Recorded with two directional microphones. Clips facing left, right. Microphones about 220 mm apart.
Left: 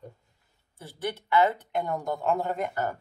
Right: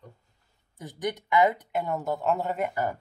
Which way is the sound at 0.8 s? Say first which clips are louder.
Right 2 dB; 15° right (ahead or behind).